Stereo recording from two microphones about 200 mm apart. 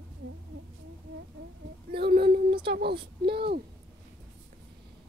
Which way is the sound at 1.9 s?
55° right (ahead or behind).